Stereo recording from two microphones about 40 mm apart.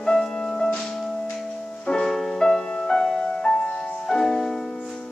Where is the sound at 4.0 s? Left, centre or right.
Centre.